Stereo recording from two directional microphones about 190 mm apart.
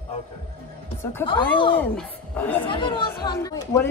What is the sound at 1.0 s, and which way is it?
Speech, 15° left (ahead or behind).